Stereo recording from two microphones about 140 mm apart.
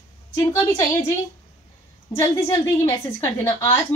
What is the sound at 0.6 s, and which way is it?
Speech, 25° left (ahead or behind).